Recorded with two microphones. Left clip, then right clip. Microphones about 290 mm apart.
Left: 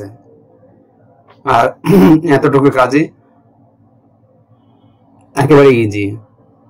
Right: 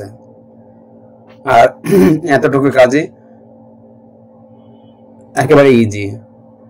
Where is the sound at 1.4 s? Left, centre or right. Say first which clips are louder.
Right 3 dB; right.